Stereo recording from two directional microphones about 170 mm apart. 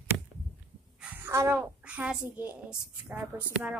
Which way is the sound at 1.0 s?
10° right (ahead or behind).